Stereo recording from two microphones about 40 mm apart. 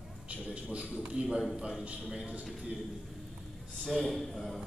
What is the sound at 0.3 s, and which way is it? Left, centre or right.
A man's voice, right.